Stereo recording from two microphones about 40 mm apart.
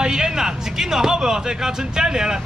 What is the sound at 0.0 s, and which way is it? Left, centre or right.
Speech, centre.